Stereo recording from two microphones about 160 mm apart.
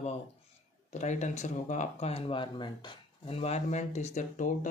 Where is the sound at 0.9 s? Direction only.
50° left (ahead or behind).